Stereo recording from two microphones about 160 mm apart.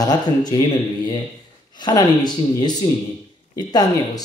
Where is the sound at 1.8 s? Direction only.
25° left (ahead or behind).